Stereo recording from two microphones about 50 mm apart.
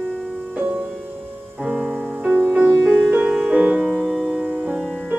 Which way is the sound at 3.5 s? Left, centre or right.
Right.